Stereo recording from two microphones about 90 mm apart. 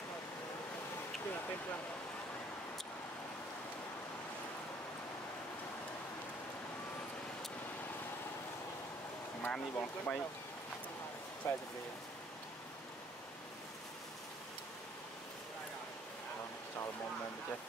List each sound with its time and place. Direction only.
9.4 s speech: 15° left (ahead or behind)
11.4 s speech: 30° left (ahead or behind)